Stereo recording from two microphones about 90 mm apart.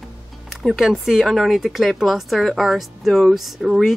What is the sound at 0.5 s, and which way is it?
Speech, centre (ahead or behind).